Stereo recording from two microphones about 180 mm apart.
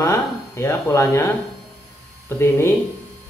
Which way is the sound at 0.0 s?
15° left (ahead or behind).